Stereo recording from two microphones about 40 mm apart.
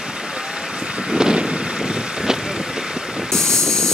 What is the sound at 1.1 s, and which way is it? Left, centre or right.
Boat, centre.